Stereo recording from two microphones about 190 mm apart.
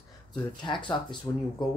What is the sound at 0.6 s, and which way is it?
Speech, 25° left (ahead or behind).